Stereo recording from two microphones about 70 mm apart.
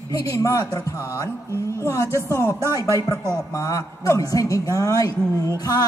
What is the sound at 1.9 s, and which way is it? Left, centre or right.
Speech, left.